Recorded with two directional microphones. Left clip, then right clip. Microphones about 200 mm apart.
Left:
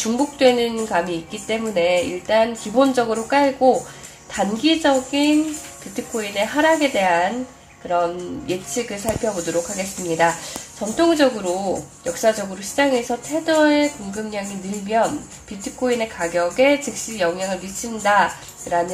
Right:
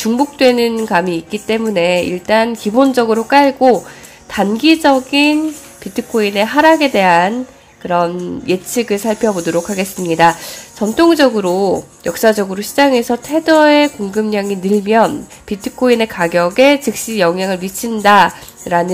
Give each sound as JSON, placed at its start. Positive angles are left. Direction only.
{"t": 0.0, "sound": "speech", "side_deg": -30}
{"t": 15.6, "sound": "speech", "side_deg": -40}